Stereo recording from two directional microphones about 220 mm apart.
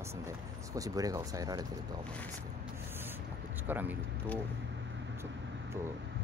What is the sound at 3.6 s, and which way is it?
Speech, 10° right (ahead or behind).